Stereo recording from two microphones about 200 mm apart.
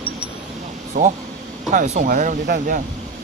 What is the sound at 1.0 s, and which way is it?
Speech, 55° right (ahead or behind).